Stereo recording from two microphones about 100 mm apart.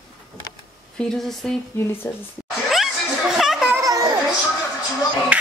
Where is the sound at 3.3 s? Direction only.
5° right (ahead or behind).